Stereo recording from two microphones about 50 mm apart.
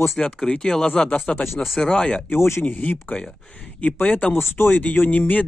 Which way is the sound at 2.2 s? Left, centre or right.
Left.